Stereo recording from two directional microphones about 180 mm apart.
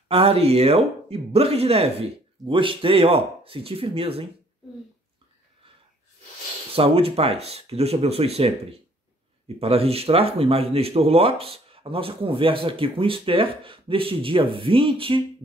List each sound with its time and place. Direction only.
0.1 s speech: 35° right (ahead or behind)
6.7 s speech: 30° right (ahead or behind)